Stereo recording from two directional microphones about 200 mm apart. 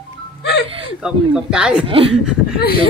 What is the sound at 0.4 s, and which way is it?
Music, 55° left (ahead or behind).